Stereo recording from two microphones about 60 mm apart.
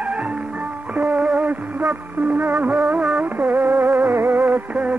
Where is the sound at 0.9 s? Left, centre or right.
Right.